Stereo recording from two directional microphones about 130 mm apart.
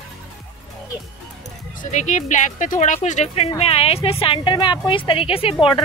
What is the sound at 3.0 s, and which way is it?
A woman's voice, 60° left (ahead or behind).